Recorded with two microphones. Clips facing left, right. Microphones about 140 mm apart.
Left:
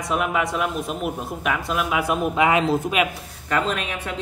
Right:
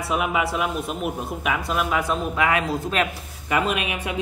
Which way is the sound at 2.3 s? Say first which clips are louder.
Left 4 dB; 20° left (ahead or behind).